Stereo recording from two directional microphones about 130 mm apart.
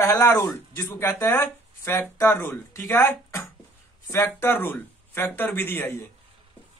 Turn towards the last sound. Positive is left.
turn(degrees=15)  # may be behind; listen again after turning